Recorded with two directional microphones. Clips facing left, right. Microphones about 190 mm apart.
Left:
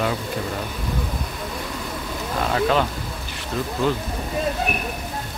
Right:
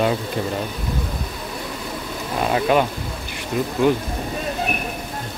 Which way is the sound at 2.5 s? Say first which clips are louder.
Right 2 dB; 15° right (ahead or behind).